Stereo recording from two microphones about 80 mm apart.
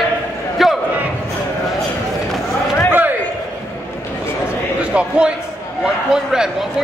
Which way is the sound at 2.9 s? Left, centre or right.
Right.